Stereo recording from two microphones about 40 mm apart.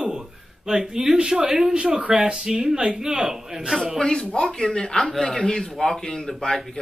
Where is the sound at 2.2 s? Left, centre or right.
Centre.